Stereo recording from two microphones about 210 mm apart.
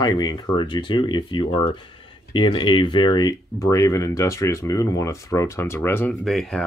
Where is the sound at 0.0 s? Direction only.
20° left (ahead or behind).